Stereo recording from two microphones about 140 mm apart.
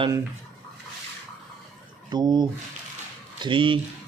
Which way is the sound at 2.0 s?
30° right (ahead or behind).